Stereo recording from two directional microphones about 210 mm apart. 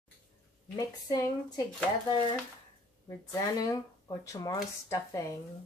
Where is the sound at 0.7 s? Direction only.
15° left (ahead or behind).